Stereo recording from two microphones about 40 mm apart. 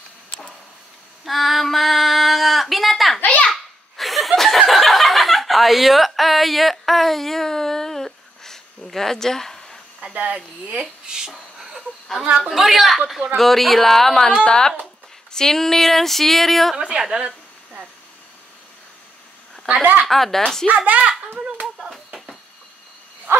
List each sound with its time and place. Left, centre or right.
1.2 s female singing: centre
3.9 s laughter: centre
4.4 s chuckle: centre
10.1 s speech: right
10.8 s a sound: centre
11.5 s a sound: centre
12.4 s speech: centre
14.4 s speech: centre
16.7 s a woman's voice: right
20.1 s speech: centre
20.6 s speech: right
21.9 s a sound: centre